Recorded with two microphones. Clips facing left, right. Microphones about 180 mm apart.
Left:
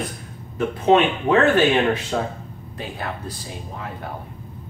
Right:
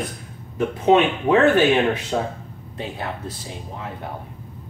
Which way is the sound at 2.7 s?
25° right (ahead or behind).